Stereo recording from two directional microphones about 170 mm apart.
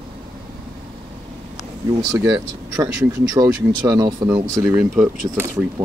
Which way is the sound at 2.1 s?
15° right (ahead or behind).